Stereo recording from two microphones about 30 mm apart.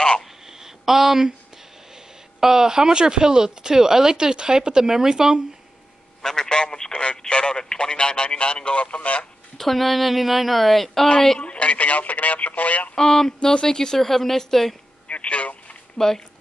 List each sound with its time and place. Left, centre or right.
0.5 s a sound: centre
2.0 s speech: centre
6.2 s female singing: centre
6.6 s speech: left
8.7 s a man's voice: left
9.6 s speech: centre
11.5 s speech: left
12.9 s female singing: left
13.9 s a woman's voice: centre
15.0 s telephone: left
16.0 s a woman's voice: centre